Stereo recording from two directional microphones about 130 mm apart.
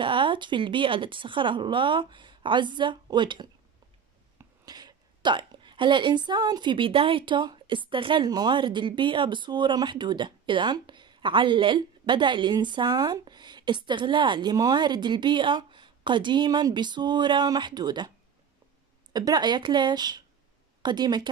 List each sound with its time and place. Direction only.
0.0 s a woman's voice: 40° right (ahead or behind)
4.6 s a woman's voice: 30° right (ahead or behind)
19.1 s a woman's voice: 30° right (ahead or behind)